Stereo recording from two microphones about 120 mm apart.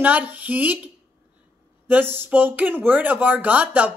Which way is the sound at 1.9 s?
15° right (ahead or behind).